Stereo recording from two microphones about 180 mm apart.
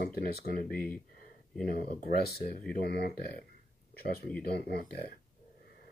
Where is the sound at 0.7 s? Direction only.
5° left (ahead or behind).